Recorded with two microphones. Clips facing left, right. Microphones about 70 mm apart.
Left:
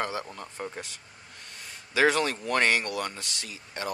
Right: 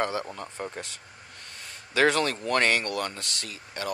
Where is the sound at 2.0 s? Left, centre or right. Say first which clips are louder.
Right 1 dB; centre.